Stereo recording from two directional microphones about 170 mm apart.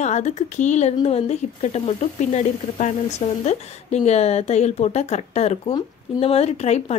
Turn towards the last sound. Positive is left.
turn(degrees=40)  # may be behind; listen again after turning